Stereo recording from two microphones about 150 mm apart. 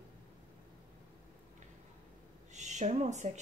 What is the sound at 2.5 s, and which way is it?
Speech, 50° right (ahead or behind).